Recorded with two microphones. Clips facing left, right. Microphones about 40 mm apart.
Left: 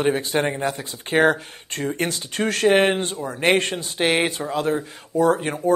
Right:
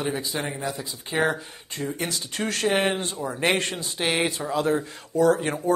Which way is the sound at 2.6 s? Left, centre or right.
Left.